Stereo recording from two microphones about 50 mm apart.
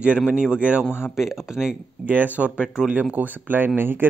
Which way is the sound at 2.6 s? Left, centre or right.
Centre.